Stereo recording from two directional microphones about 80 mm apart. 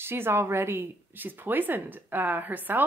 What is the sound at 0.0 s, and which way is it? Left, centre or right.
Speech, right.